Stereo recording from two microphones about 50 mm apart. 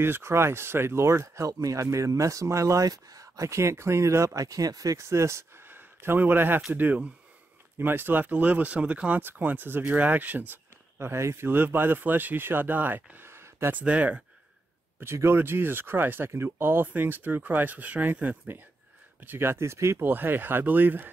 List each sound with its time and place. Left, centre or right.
0.0 s speech: right
3.3 s speech: right
4.9 s speech: right
5.7 s speech: right
8.3 s speech: right
11.0 s speech: right
11.4 s speech: right
13.3 s a sound: right
13.7 s speech: right
15.0 s speech: right
16.3 s speech: right
19.2 s speech: right
20.0 s speech: right